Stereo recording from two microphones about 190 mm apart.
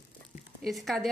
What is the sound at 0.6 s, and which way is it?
Speech, centre (ahead or behind).